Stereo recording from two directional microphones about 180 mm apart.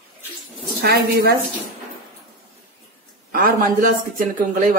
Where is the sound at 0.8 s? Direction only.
60° right (ahead or behind).